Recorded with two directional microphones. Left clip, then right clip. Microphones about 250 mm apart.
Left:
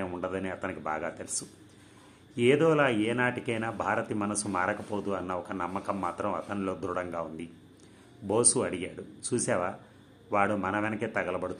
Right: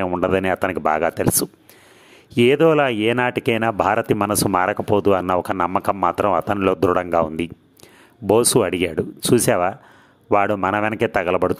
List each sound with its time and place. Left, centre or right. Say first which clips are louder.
0.0 s speech: right 14 dB; right
2.3 s speech: right 9 dB; right